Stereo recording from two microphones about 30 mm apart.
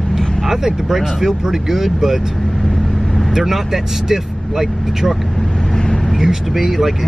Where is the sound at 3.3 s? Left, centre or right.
Centre.